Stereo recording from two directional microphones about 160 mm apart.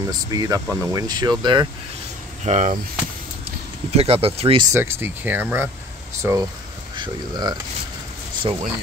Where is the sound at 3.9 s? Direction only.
40° right (ahead or behind).